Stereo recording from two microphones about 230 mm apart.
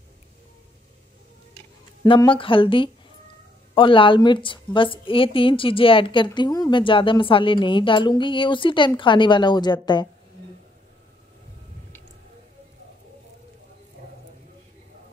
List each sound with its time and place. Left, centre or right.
2.0 s a woman's voice: left